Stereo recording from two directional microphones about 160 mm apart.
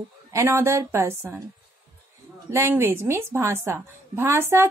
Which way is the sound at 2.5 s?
15° right (ahead or behind).